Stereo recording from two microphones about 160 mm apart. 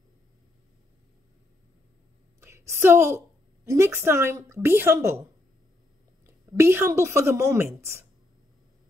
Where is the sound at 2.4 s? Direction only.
15° right (ahead or behind).